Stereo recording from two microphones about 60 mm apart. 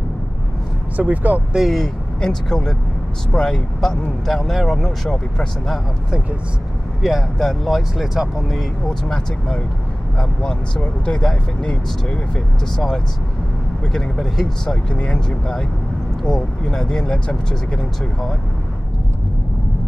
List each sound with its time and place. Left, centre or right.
0.9 s speech: right
1.5 s speech: centre
7.0 s speech: centre
8.8 s speech: centre
11.1 s speech: centre
14.7 s speech: centre